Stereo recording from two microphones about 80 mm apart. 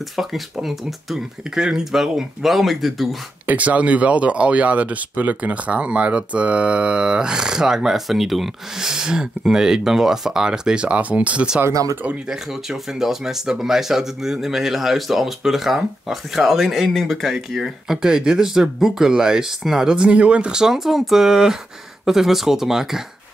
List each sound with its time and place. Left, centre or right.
0.1 s speech: centre
3.4 s speech: centre
11.7 s speech: right
12.3 s speech: centre